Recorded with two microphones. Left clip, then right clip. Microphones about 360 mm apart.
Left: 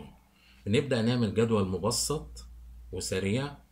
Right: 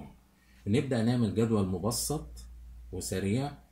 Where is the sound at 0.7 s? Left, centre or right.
Left.